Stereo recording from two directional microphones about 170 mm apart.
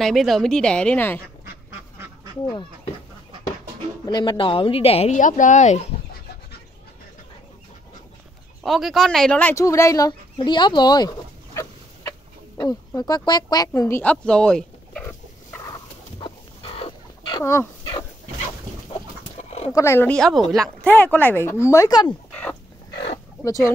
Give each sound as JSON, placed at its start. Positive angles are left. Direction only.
{"t": 0.0, "sound": "a woman's voice", "side_deg": 0}
{"t": 1.7, "sound": "duck", "side_deg": -15}
{"t": 4.0, "sound": "speech", "side_deg": 25}
{"t": 8.6, "sound": "speech", "side_deg": 0}
{"t": 14.1, "sound": "a sound", "side_deg": 5}
{"t": 16.2, "sound": "chicken", "side_deg": 30}
{"t": 17.4, "sound": "speech", "side_deg": 15}
{"t": 19.3, "sound": "chicken", "side_deg": 40}
{"t": 19.7, "sound": "speech", "side_deg": 15}
{"t": 22.3, "sound": "chicken", "side_deg": 5}